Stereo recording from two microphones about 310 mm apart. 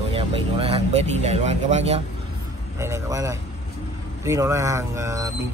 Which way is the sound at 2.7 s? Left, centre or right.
Centre.